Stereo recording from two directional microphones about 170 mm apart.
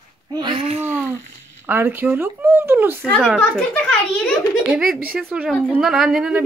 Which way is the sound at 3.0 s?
5° left (ahead or behind).